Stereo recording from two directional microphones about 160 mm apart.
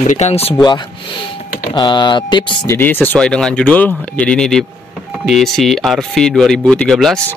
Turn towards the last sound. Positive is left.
turn(degrees=5)  # may be behind; listen again after turning